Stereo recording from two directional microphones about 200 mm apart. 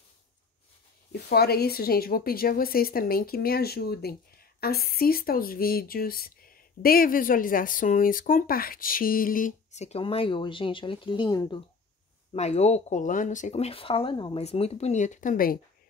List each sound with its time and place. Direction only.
1.3 s a woman's voice: 50° left (ahead or behind); by 11.6 s 20° left (ahead or behind)
12.3 s speech: 35° left (ahead or behind)